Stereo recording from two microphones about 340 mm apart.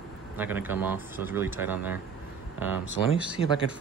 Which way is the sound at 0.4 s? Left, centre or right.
Centre.